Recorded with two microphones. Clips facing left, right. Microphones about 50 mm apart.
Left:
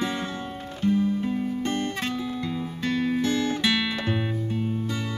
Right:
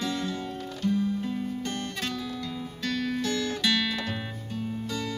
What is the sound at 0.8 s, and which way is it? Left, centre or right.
Music, left.